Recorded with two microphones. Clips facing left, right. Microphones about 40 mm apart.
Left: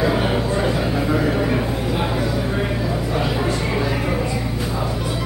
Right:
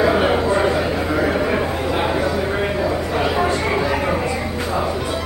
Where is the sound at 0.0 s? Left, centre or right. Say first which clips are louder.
Right 4 dB; right.